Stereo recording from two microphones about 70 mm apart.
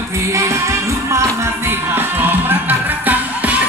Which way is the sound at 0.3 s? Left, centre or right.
Right.